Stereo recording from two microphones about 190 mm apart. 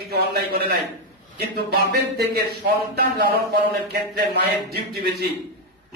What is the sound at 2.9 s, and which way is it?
A man's voice, 55° right (ahead or behind).